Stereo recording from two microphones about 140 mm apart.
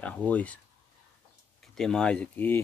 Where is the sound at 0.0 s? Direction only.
10° left (ahead or behind).